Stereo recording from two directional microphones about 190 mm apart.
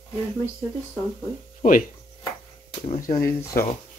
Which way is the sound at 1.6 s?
45° left (ahead or behind).